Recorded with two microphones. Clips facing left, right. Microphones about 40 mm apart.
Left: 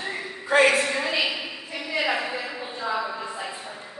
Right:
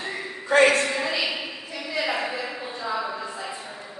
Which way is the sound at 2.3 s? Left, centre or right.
Centre.